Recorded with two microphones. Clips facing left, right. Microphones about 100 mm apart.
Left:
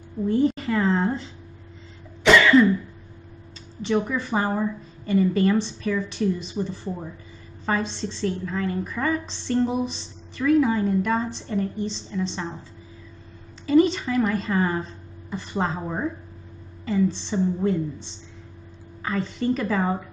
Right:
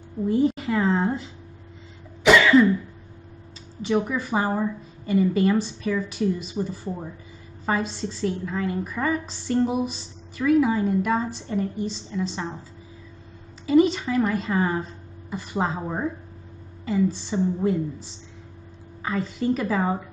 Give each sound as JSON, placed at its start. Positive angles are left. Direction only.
{"t": 0.2, "sound": "a woman's voice", "side_deg": -5}
{"t": 2.2, "sound": "cough", "side_deg": -5}
{"t": 3.8, "sound": "a woman's voice", "side_deg": -5}
{"t": 13.7, "sound": "a woman's voice", "side_deg": -5}
{"t": 14.1, "sound": "a woman's voice", "side_deg": -15}